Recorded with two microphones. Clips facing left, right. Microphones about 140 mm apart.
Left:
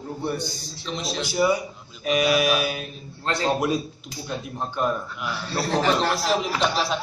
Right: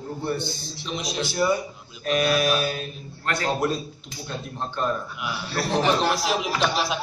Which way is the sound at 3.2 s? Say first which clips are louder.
Left 2 dB; 25° left (ahead or behind).